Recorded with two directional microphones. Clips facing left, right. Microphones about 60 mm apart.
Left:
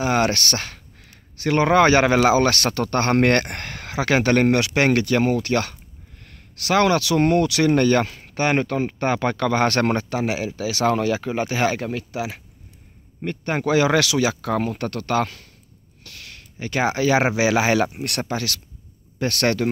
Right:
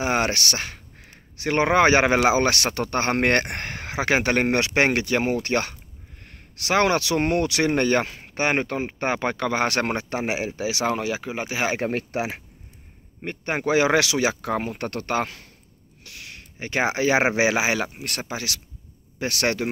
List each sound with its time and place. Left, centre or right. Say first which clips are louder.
0.0 s speech: left 3 dB; right
10.0 s speech: left 2 dB; right; by 11.7 s centre
11.8 s speech: right 1 dB; right
13.2 s speech: left 2 dB; right
17.7 s speech: left 6 dB; centre
18.3 s a man's voice: left 4 dB; centre